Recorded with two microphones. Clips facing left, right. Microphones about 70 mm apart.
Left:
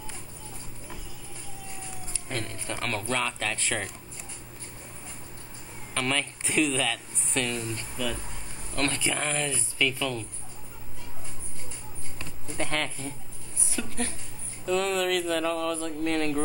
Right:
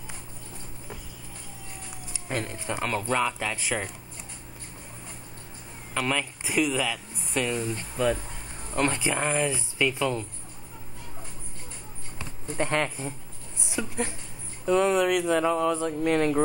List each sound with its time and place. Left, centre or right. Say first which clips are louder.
2.1 s speech: right 4 dB; centre
5.9 s speech: right 1 dB; centre
7.7 s speech: right 7 dB; right
12.2 s speech: right 4 dB; right